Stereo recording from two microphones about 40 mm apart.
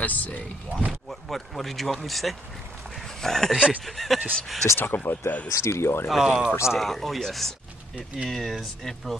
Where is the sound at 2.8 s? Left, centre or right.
Centre.